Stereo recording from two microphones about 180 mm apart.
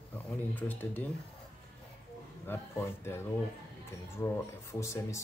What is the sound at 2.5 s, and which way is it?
Speech, 15° left (ahead or behind).